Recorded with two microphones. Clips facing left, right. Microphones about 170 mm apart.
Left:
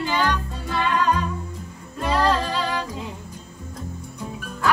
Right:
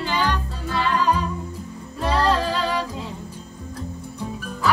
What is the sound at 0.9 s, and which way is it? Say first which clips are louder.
Music: even; 10° right (ahead or behind).